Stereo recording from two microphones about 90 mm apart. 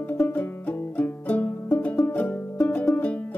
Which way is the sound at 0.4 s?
20° left (ahead or behind).